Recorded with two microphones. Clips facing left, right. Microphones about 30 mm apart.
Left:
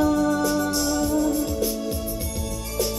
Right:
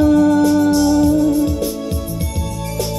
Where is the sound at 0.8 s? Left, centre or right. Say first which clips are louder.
Right 9 dB; centre.